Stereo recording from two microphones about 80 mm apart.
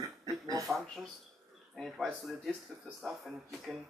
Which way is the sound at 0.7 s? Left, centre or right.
Right.